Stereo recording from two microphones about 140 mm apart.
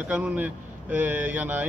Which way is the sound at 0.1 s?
10° right (ahead or behind).